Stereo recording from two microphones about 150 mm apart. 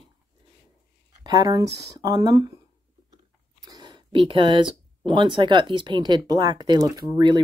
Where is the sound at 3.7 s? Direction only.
25° right (ahead or behind).